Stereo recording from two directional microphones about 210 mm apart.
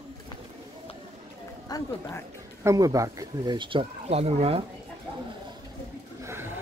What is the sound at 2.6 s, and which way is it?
Speech, 15° right (ahead or behind).